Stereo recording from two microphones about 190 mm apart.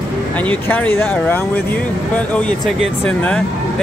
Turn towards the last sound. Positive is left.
turn(degrees=5)  # may be behind; listen again after turning